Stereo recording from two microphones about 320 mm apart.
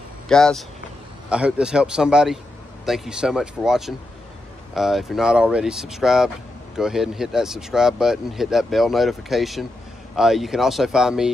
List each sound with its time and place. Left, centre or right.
0.3 s speech: centre